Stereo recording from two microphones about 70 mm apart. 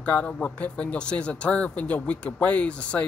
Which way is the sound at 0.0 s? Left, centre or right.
Centre.